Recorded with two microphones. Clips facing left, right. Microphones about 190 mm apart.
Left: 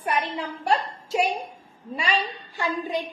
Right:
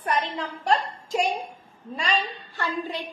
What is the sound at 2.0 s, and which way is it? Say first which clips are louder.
Speech: left 1 dB; 10° left (ahead or behind).